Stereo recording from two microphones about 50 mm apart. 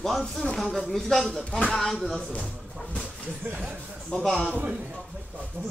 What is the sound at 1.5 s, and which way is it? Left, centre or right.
Speech, centre.